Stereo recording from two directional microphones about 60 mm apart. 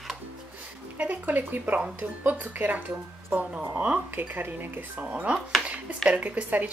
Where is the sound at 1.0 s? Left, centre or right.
Right.